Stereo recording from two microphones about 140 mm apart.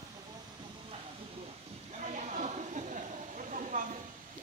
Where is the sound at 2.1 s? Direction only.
60° right (ahead or behind).